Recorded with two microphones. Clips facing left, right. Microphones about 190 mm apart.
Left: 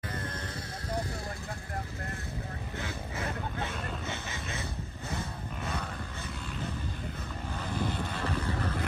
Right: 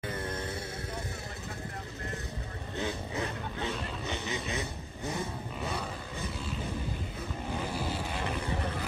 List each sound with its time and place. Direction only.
2.8 s vehicle: 15° right (ahead or behind)
5.6 s a sound: 5° right (ahead or behind)
7.5 s vehicle: 10° right (ahead or behind)
8.2 s boat: 15° right (ahead or behind)